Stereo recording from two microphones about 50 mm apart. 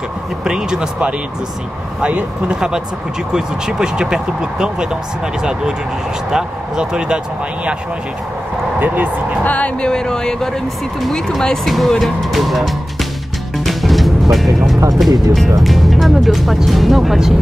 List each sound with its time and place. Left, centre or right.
0.5 s speech: centre
2.0 s speech: right
2.5 s speech: centre
8.7 s speech: right
9.4 s speech: left
9.8 s speech: centre
13.7 s music: centre
15.0 s speech: centre